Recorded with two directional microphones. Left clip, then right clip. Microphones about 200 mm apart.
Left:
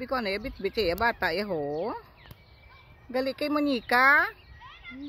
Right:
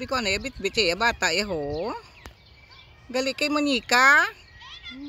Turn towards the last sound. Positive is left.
turn(degrees=-10)  # may be behind; listen again after turning